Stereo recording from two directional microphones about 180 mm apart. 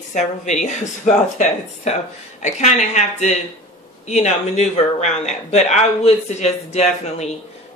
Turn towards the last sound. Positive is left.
turn(degrees=40)  # may be behind; listen again after turning